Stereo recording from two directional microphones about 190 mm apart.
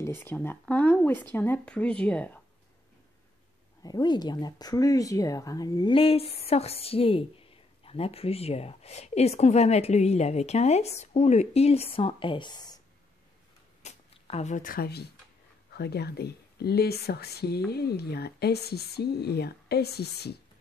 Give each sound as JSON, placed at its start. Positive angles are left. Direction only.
{"t": 0.0, "sound": "speech", "side_deg": 10}
{"t": 3.8, "sound": "speech", "side_deg": 20}
{"t": 13.8, "sound": "speech", "side_deg": 35}